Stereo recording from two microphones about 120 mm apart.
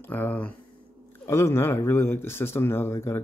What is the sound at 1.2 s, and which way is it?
Speech, 20° left (ahead or behind).